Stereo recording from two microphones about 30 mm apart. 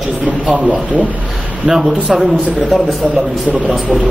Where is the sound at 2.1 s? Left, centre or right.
Centre.